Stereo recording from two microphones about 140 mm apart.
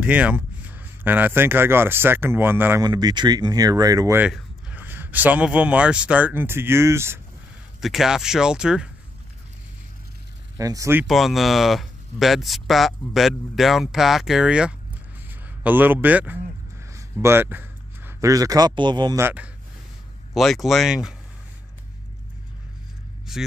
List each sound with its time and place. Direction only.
0.0 s speech: 10° right (ahead or behind)
2.8 s speech: 30° right (ahead or behind)
4.2 s speech: 10° right (ahead or behind)
7.8 s speech: centre (ahead or behind)
10.6 s speech: 25° right (ahead or behind)
11.1 s a man's voice: centre (ahead or behind); by 19.1 s 30° right (ahead or behind)
19.1 s speech: 15° right (ahead or behind)
20.3 s speech: centre (ahead or behind)
23.3 s speech: centre (ahead or behind)